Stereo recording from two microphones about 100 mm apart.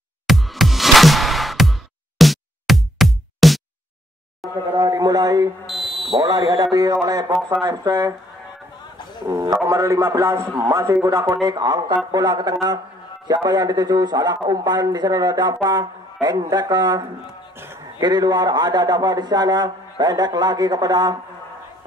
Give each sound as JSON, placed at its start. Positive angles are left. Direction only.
{"t": 0.3, "sound": "music", "side_deg": 0}
{"t": 4.4, "sound": "a sound", "side_deg": 0}
{"t": 4.8, "sound": "a man's voice", "side_deg": -40}
{"t": 5.7, "sound": "fire alarm", "side_deg": 0}
{"t": 6.1, "sound": "a man's voice", "side_deg": -40}
{"t": 9.2, "sound": "a man's voice", "side_deg": -35}
{"t": 18.0, "sound": "speech", "side_deg": -45}